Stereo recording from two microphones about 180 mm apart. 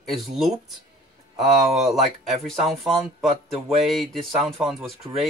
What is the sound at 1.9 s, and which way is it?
Speech, centre (ahead or behind).